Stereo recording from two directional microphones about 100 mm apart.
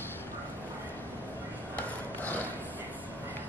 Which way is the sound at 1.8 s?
15° left (ahead or behind).